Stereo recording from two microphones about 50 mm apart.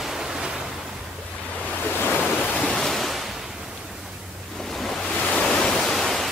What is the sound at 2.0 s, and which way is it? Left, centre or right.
Waves, left.